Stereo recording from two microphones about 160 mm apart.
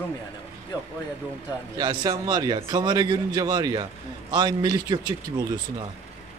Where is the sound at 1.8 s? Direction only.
25° right (ahead or behind).